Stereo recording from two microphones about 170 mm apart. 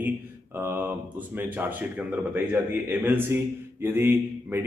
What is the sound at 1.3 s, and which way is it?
A man's voice, 10° right (ahead or behind).